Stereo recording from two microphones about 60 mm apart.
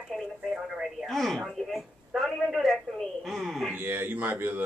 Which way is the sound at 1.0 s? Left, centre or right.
Centre.